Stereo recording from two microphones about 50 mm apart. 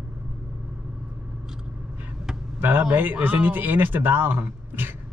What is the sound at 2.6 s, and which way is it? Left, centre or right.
Speech, right.